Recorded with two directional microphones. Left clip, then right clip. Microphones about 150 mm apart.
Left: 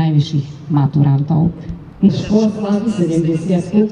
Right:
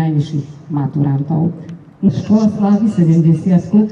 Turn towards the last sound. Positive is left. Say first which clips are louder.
# even
turn(degrees=-15)  # may be behind; listen again after turning